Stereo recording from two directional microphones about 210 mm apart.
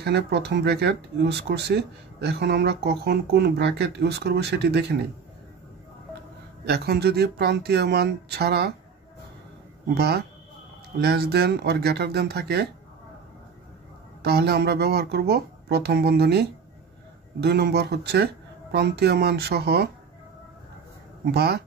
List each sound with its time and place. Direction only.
0.0 s speech: 50° right (ahead or behind)
6.6 s speech: 50° right (ahead or behind)
9.9 s speech: 50° right (ahead or behind)
14.2 s speech: 50° right (ahead or behind)
21.3 s speech: 50° right (ahead or behind)